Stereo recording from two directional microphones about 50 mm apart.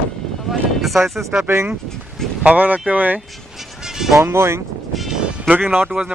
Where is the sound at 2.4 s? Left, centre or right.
Right.